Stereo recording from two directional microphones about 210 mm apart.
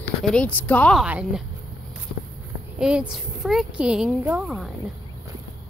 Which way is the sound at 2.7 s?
5° right (ahead or behind).